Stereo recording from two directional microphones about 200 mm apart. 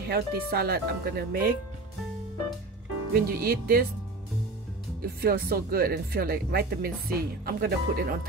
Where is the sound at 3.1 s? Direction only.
50° right (ahead or behind).